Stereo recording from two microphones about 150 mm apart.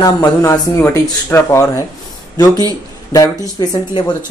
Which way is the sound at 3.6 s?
30° left (ahead or behind).